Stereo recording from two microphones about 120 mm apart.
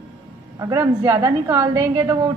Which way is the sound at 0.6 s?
25° right (ahead or behind).